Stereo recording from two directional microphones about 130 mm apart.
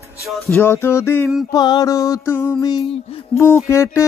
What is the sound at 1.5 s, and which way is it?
Speech, 30° left (ahead or behind).